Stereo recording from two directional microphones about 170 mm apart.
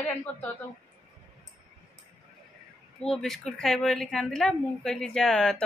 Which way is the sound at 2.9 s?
5° left (ahead or behind).